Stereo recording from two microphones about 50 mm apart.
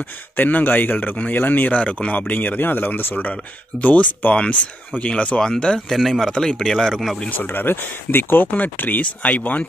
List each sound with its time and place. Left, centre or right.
0.4 s speech: left; by 5.8 s centre
5.9 s speech: centre
6.3 s speech: centre
7.2 s speech: left
8.5 s speech: left